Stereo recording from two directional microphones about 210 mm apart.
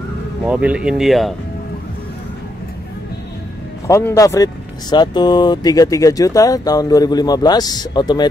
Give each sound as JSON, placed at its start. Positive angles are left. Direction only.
{"t": 0.5, "sound": "speech", "side_deg": -5}
{"t": 3.8, "sound": "speech", "side_deg": 15}